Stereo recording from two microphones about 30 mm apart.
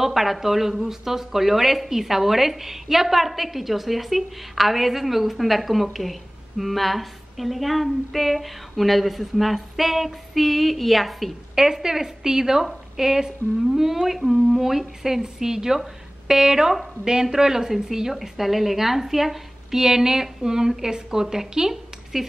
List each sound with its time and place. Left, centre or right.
0.0 s a woman's voice: centre
11.5 s a woman's voice: centre
15.2 s a woman's voice: centre